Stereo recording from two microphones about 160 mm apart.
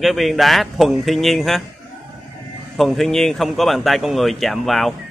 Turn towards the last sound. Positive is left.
turn(degrees=0)  # may be behind; listen again after turning